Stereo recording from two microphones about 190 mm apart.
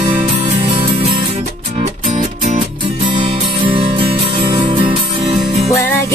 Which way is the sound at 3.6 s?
25° right (ahead or behind).